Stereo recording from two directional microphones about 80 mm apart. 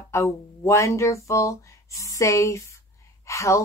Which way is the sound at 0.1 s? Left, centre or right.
Left.